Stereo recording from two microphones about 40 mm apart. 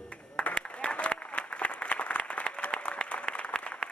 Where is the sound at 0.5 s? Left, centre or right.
Left.